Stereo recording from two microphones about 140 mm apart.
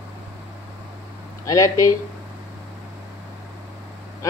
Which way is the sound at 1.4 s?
25° left (ahead or behind).